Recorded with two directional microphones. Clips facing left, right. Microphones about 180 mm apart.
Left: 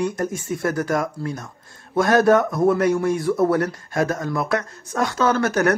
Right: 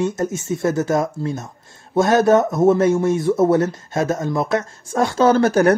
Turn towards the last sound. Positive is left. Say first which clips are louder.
# right 5 dB
turn(degrees=-30)  # may be behind; listen again after turning